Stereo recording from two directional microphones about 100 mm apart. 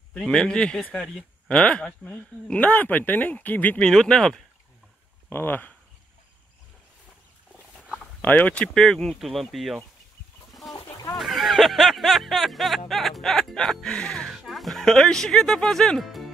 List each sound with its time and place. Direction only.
0.1 s speech: 10° left (ahead or behind)
3.9 s music: 5° left (ahead or behind)
5.3 s speech: 20° left (ahead or behind)
7.7 s a sound: 10° right (ahead or behind)
8.2 s music: 15° left (ahead or behind)
10.7 s chicken: centre (ahead or behind)
11.1 s music: centre (ahead or behind)
14.3 s speech: centre (ahead or behind)